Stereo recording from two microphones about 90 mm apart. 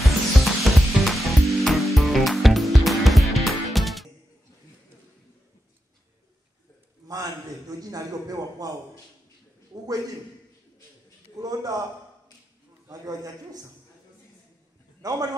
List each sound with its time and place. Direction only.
0.0 s music: centre (ahead or behind)
7.1 s a sound: 45° right (ahead or behind)
11.3 s a man's voice: 45° right (ahead or behind)
12.9 s a man's voice: 45° right (ahead or behind)
15.0 s a man's voice: 45° right (ahead or behind)